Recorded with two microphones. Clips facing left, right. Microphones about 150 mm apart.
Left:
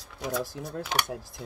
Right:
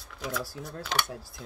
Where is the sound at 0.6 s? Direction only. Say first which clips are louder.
Left 2 dB; 15° left (ahead or behind).